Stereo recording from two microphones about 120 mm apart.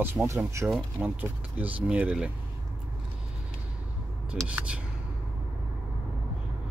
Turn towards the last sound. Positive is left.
turn(degrees=-10)  # may be behind; listen again after turning